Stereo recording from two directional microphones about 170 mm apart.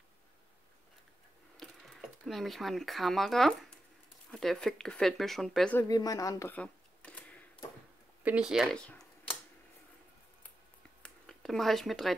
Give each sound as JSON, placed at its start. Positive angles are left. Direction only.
{"t": 1.6, "sound": "speech", "side_deg": 0}
{"t": 5.8, "sound": "a woman's voice", "side_deg": 20}
{"t": 6.5, "sound": "camera", "side_deg": 5}
{"t": 8.2, "sound": "speech", "side_deg": -5}
{"t": 11.0, "sound": "a sound", "side_deg": 5}